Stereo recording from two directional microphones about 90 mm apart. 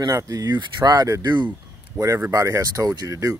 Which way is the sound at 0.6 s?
55° right (ahead or behind).